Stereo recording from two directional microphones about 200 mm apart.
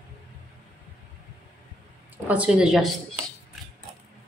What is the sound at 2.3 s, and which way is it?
Speech, 5° right (ahead or behind).